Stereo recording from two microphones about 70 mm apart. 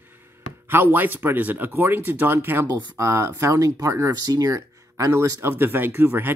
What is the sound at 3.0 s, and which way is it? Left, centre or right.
Speech, right.